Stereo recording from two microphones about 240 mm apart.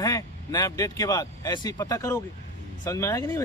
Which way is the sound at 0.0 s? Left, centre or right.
Centre.